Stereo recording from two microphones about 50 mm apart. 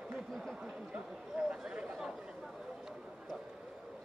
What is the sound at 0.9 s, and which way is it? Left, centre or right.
Speech, right.